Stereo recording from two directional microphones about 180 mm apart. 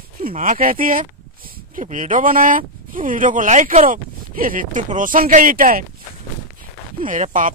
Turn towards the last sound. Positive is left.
turn(degrees=-45)  # may be behind; listen again after turning